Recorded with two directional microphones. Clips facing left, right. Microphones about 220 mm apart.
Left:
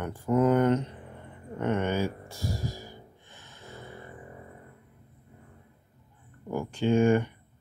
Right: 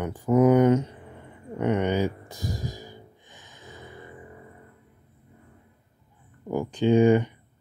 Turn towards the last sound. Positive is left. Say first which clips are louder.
# right 4 dB
turn(degrees=-20)  # may be behind; listen again after turning